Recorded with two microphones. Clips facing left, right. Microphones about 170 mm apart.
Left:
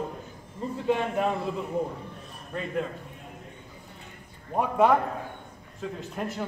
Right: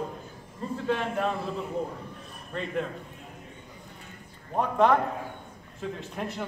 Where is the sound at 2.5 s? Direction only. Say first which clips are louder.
Even; 10° left (ahead or behind).